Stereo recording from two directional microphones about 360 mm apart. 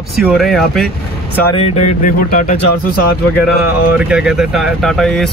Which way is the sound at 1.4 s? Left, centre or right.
Centre.